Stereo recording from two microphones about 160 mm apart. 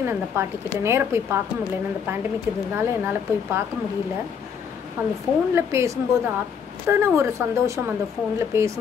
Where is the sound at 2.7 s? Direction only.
15° right (ahead or behind).